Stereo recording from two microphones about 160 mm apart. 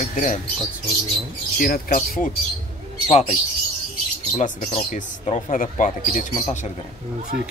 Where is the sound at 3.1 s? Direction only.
40° left (ahead or behind).